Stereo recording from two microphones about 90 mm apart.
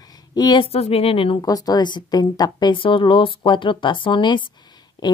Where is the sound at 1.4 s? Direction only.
45° left (ahead or behind).